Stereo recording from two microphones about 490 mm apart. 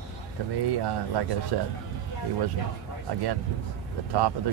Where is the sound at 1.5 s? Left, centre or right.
Right.